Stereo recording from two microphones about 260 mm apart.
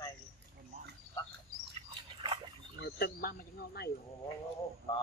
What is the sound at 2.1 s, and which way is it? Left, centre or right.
Dog, centre.